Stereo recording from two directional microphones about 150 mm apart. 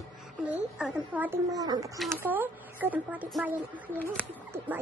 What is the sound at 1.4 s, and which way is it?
Speech, 25° right (ahead or behind).